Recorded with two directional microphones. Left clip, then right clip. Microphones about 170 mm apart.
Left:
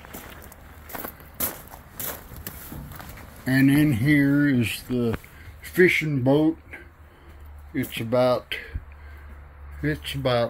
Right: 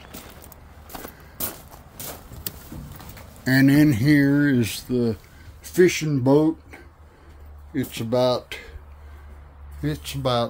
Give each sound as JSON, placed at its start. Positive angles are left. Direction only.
{"t": 0.9, "sound": "a sound", "side_deg": 60}
{"t": 3.4, "sound": "speech", "side_deg": -50}
{"t": 5.6, "sound": "speech", "side_deg": -10}
{"t": 9.8, "sound": "speech", "side_deg": -10}